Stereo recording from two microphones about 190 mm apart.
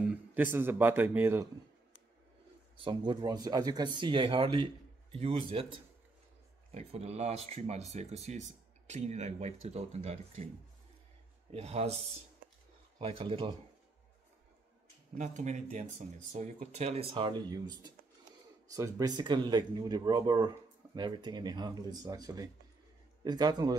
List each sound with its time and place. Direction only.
0.3 s a man's voice: 10° right (ahead or behind)
2.8 s speech: 25° right (ahead or behind)
11.5 s speech: 35° right (ahead or behind)
13.0 s speech: 25° right (ahead or behind)
15.1 s speech: 40° right (ahead or behind); by 23.8 s 20° right (ahead or behind)